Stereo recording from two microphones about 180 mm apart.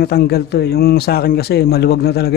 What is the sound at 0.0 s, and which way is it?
Speech, 65° left (ahead or behind).